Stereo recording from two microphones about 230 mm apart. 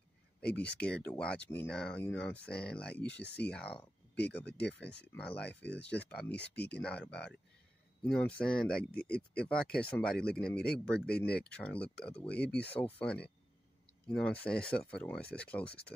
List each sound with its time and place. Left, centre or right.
0.5 s speech: centre
4.5 s speech: left
5.1 s speech: centre